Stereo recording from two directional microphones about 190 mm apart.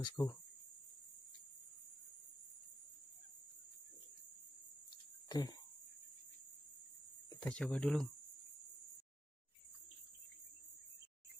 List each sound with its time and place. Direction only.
0.0 s speech: 15° left (ahead or behind)
5.3 s speech: 20° left (ahead or behind)
7.4 s speech: 5° left (ahead or behind)